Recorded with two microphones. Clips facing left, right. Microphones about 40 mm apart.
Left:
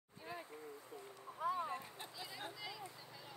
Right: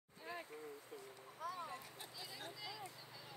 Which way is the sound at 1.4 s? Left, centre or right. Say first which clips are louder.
Left 7 dB; left.